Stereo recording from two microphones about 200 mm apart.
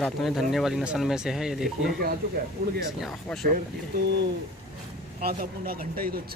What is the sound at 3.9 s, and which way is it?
Speech, 55° right (ahead or behind).